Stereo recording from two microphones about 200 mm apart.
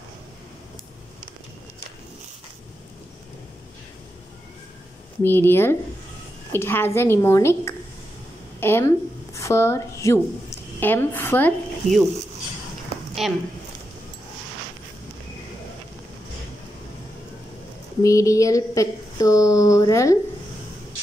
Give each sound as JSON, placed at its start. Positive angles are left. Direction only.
{"t": 5.2, "sound": "speech", "side_deg": 10}
{"t": 13.2, "sound": "speech", "side_deg": 0}
{"t": 18.0, "sound": "speech", "side_deg": 15}